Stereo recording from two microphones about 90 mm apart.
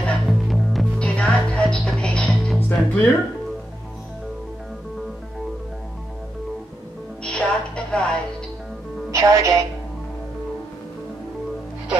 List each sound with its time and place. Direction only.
0.0 s music: centre (ahead or behind)
0.9 s music: 10° left (ahead or behind)
7.2 s music: 10° left (ahead or behind)
9.1 s music: 40° right (ahead or behind)